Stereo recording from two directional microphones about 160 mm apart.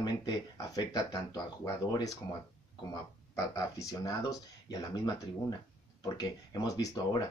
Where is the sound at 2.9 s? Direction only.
20° left (ahead or behind).